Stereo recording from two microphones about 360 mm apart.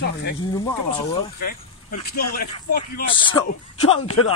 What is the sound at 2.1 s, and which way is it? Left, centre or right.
Speech, left.